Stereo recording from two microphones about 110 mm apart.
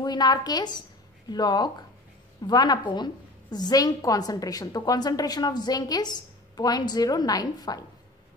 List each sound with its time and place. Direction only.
0.0 s a woman's voice: 40° left (ahead or behind)